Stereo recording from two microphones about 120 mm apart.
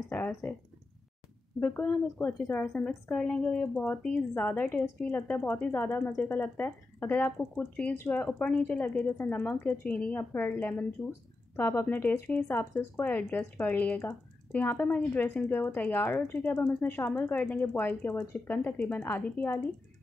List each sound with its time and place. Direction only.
0.1 s a woman's voice: 15° left (ahead or behind)
1.6 s a woman's voice: 10° left (ahead or behind)
8.3 s a woman's voice: 10° left (ahead or behind)